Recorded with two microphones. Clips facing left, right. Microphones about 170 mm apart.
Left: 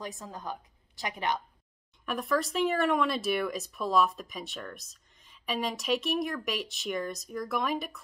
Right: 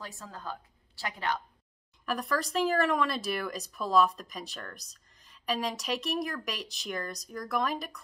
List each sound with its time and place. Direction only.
0.0 s a woman's voice: 20° left (ahead or behind)
2.0 s speech: centre (ahead or behind)